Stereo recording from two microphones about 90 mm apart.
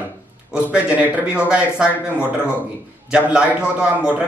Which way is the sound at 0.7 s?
15° right (ahead or behind).